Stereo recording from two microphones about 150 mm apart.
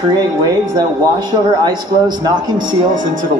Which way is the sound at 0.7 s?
30° right (ahead or behind).